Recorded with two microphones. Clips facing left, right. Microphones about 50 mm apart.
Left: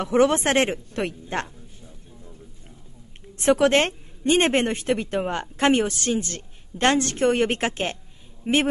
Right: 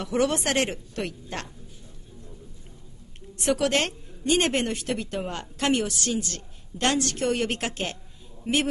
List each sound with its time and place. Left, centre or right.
0.0 s a woman's voice: left
3.3 s a woman's voice: left